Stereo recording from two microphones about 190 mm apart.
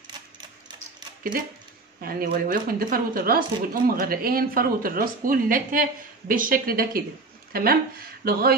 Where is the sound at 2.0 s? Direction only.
50° right (ahead or behind).